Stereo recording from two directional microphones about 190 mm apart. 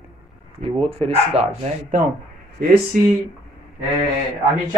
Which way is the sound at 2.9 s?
45° right (ahead or behind).